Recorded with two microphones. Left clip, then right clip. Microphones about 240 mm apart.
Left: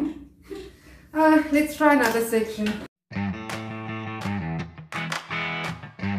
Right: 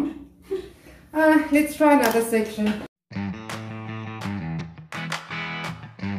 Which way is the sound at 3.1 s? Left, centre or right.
Centre.